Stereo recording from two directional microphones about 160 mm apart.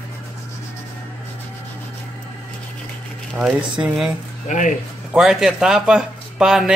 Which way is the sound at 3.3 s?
5° right (ahead or behind).